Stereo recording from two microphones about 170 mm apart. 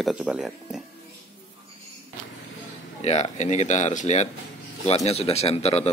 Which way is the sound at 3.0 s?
40° left (ahead or behind).